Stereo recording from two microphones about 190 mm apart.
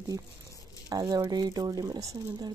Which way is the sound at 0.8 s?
20° right (ahead or behind).